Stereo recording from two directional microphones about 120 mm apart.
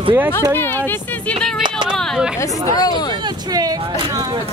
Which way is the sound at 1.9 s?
5° right (ahead or behind).